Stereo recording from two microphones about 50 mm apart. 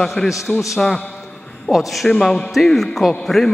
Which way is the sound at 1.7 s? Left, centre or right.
Centre.